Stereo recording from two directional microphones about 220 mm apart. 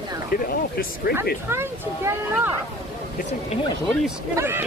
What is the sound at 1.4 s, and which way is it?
Speech, 10° right (ahead or behind).